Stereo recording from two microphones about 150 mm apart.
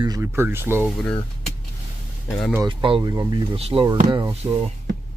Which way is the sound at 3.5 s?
40° right (ahead or behind).